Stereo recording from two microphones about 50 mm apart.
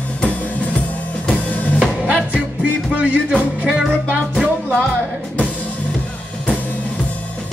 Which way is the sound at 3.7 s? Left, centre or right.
Centre.